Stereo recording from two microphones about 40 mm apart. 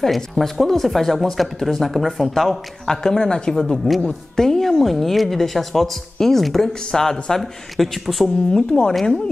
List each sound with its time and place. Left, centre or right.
0.0 s a woman's voice: centre
2.9 s speech: centre
3.7 s a woman's voice: centre
7.7 s a woman's voice: centre